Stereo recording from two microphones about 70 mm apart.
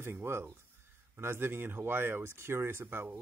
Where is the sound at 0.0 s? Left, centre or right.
Right.